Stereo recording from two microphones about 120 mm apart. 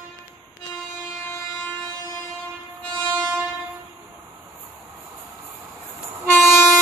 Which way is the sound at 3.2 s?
10° right (ahead or behind).